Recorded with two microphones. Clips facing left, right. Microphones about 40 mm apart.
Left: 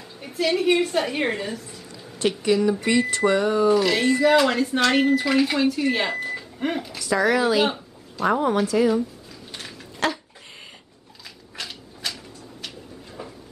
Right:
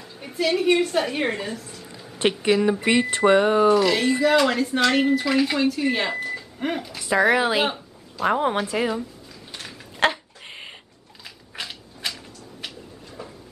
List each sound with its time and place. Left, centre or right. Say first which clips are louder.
0.0 s a woman's voice: even; centre
2.1 s speech: right 1 dB; right
3.7 s speech: even; centre
7.0 s speech: right 2 dB; right
9.5 s dog: even; centre
10.0 s a sound: right 3 dB; right
11.5 s mechanisms: right 1 dB; centre
13.2 s a sound: left 1 dB; centre